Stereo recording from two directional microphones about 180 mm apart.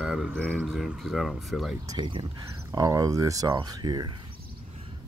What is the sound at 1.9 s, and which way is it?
Speech, 25° right (ahead or behind).